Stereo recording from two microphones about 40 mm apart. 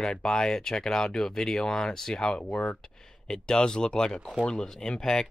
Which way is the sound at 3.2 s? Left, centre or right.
Centre.